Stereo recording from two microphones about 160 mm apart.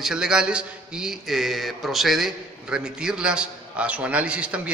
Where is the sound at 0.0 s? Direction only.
5° right (ahead or behind).